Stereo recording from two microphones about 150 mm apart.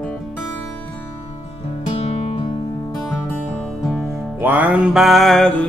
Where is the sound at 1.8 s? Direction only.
40° left (ahead or behind).